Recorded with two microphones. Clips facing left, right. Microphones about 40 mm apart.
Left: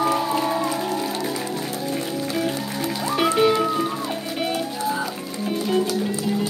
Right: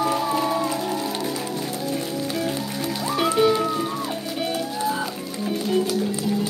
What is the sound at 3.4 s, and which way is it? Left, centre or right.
Music, centre.